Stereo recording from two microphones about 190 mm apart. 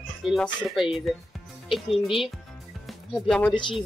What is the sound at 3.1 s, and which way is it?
Speech, 5° left (ahead or behind).